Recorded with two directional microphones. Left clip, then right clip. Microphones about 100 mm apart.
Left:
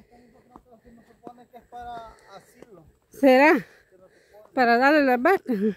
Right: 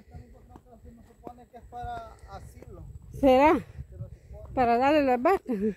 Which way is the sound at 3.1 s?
45° left (ahead or behind).